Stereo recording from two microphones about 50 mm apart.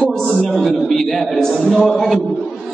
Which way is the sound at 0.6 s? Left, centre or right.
Centre.